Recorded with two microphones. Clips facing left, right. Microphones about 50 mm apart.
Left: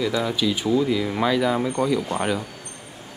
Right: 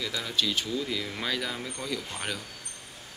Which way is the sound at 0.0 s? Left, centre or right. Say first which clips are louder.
Left 8 dB; centre.